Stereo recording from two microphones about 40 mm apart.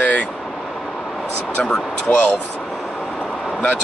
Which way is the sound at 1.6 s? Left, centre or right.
Centre.